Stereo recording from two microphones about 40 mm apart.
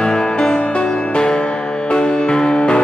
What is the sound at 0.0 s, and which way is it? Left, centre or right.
Music, centre.